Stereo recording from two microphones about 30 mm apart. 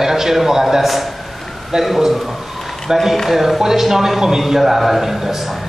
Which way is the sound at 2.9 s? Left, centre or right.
Centre.